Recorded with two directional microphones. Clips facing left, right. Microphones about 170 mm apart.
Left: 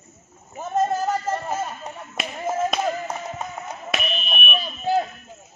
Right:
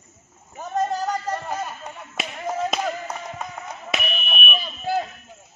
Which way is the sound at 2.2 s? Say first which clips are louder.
Left 2 dB; centre (ahead or behind).